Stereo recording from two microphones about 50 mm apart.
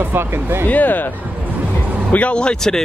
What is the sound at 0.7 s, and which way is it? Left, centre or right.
Speech, left.